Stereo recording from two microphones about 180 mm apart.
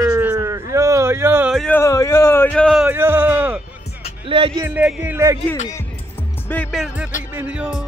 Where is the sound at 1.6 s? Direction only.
10° left (ahead or behind).